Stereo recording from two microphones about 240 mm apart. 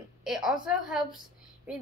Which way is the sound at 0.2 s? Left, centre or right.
Centre.